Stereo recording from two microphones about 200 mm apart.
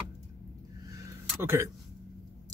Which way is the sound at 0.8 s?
15° right (ahead or behind).